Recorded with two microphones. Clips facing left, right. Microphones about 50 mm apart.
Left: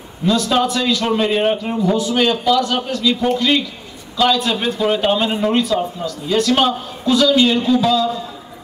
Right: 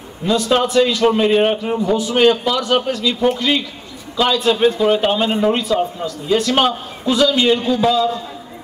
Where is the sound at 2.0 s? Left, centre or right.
Right; by 5.5 s centre.